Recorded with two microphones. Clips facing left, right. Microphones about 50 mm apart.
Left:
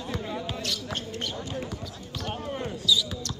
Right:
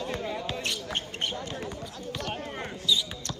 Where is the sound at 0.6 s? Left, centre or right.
Right.